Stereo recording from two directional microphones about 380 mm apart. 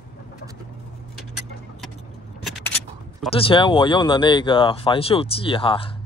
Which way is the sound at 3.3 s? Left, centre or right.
Centre.